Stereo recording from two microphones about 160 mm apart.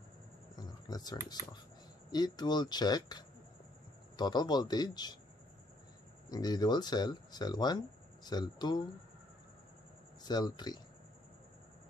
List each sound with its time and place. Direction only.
0.6 s a sound: 25° left (ahead or behind)
2.0 s speech: 25° left (ahead or behind)
6.2 s speech: 25° left (ahead or behind)
10.2 s speech: 25° left (ahead or behind)